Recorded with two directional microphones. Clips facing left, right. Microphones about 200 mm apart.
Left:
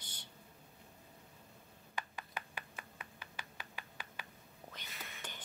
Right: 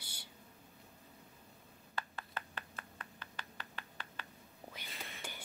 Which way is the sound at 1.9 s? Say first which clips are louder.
Even; 15° left (ahead or behind).